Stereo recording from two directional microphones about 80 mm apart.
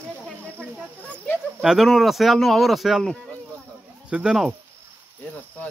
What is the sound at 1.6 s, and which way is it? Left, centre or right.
Speech, centre.